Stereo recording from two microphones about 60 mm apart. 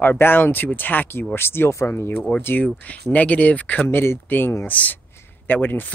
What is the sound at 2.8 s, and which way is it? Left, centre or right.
Speech, left.